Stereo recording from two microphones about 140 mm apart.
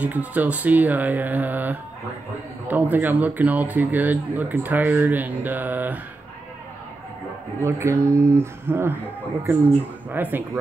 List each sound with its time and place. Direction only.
0.0 s a man's voice: 10° right (ahead or behind)
7.6 s speech: 20° right (ahead or behind)
10.0 s a man's voice: 15° right (ahead or behind)